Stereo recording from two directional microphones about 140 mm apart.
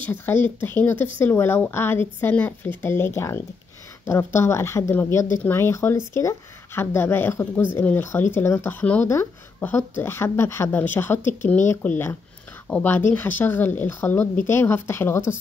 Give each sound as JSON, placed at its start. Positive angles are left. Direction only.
{"t": 0.0, "sound": "speech", "side_deg": 15}